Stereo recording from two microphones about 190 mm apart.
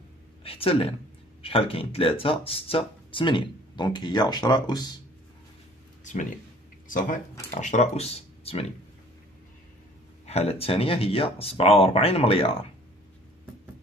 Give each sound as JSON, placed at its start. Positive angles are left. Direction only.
{"t": 0.4, "sound": "speech", "side_deg": 30}
{"t": 6.9, "sound": "speech", "side_deg": 45}
{"t": 10.2, "sound": "speech", "side_deg": 35}